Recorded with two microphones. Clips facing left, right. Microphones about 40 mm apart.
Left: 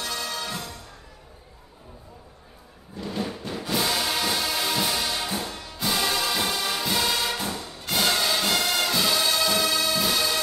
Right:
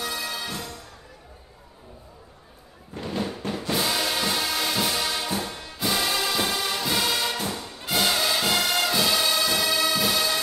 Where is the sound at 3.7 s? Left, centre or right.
Centre.